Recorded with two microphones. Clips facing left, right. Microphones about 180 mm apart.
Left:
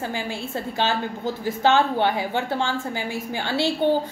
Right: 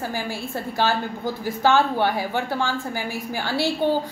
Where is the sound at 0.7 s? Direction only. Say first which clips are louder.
Right 2 dB; 20° left (ahead or behind).